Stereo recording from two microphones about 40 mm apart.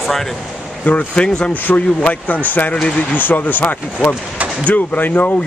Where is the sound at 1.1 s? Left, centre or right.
Left.